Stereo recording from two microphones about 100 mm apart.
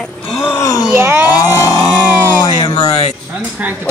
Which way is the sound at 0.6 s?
35° left (ahead or behind).